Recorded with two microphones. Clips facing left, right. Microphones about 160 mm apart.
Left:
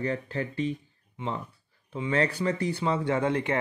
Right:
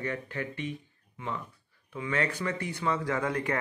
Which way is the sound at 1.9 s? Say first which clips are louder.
Left 4 dB; 30° left (ahead or behind).